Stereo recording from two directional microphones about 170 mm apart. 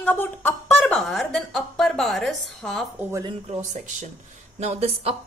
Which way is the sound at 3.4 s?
45° right (ahead or behind).